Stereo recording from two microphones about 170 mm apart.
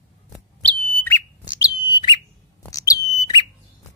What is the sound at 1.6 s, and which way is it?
Bird, 25° left (ahead or behind).